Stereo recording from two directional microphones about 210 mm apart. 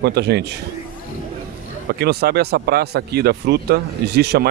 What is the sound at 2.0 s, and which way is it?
Speech, 50° right (ahead or behind).